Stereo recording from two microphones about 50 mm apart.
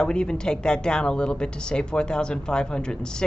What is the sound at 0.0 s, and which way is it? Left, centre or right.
A woman's voice, centre.